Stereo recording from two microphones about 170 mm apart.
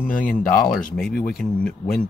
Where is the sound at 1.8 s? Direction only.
40° left (ahead or behind).